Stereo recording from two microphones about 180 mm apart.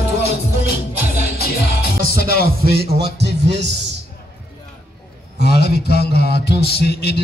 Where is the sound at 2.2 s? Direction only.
60° left (ahead or behind).